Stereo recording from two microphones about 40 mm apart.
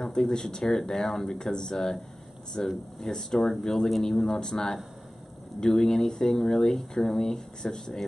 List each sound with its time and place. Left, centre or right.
0.0 s speech: centre